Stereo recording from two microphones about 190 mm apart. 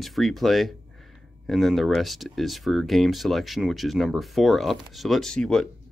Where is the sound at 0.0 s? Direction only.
Centre (ahead or behind).